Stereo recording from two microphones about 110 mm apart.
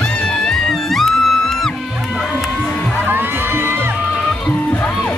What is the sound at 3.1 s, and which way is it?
Music, 20° right (ahead or behind).